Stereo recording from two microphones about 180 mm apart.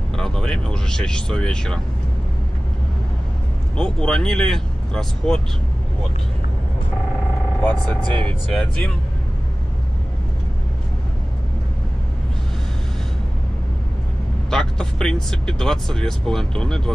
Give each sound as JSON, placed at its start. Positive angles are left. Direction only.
{"t": 0.1, "sound": "speech", "side_deg": 5}
{"t": 3.7, "sound": "speech", "side_deg": 5}
{"t": 8.1, "sound": "speech", "side_deg": -25}
{"t": 8.5, "sound": "speech", "side_deg": 5}
{"t": 14.5, "sound": "speech", "side_deg": 5}